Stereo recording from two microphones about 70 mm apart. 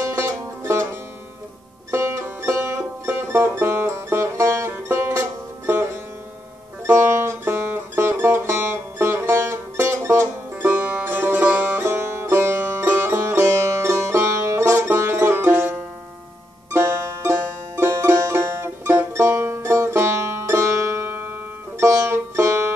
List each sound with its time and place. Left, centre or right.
1.9 s music: right
6.9 s music: right
10.7 s music: right
16.7 s music: right